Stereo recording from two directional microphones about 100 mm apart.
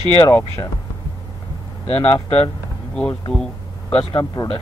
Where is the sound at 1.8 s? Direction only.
90° left.